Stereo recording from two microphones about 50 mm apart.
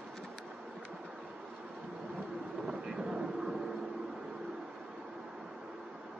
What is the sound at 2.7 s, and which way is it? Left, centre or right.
Vehicle, centre.